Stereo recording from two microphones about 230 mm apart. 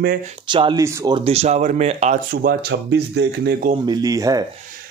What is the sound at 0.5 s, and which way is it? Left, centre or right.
Speech, centre.